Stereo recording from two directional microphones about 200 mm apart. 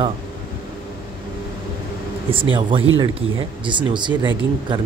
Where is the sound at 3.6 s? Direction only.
25° right (ahead or behind).